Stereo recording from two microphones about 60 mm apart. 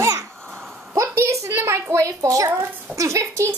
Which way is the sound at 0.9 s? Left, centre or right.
Right.